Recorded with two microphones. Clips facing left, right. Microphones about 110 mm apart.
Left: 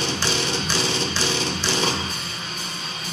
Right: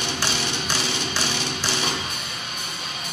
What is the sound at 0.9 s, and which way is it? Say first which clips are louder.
Music: left 3 dB; 30° left (ahead or behind).